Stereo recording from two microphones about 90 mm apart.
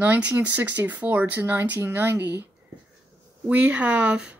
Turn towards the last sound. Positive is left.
turn(degrees=-10)  # may be behind; listen again after turning